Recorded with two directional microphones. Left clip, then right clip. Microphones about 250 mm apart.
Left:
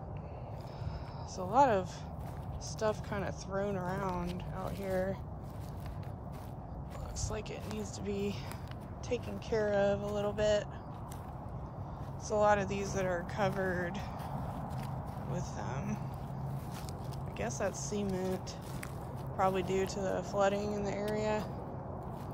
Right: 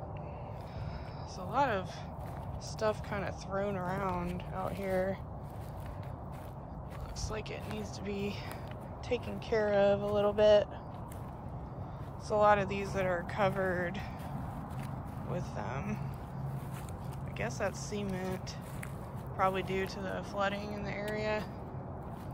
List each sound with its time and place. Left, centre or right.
1.4 s speech: centre
7.2 s speech: centre
12.3 s speech: centre
15.3 s speech: centre
17.4 s speech: centre
19.3 s speech: centre